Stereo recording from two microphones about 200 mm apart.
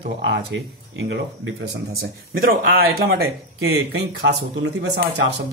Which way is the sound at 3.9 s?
55° right (ahead or behind).